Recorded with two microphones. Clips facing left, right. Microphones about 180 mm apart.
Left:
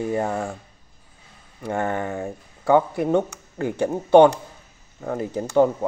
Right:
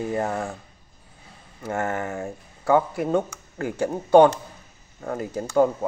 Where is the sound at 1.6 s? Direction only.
15° left (ahead or behind).